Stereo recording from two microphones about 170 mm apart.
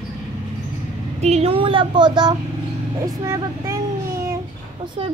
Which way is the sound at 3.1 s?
20° right (ahead or behind).